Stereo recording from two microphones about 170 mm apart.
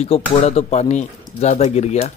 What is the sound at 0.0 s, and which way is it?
Speech, 35° left (ahead or behind).